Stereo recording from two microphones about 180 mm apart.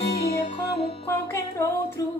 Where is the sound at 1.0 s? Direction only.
15° left (ahead or behind).